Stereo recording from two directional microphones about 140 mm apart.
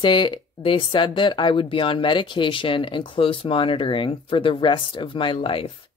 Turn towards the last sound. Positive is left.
turn(degrees=40)  # may be behind; listen again after turning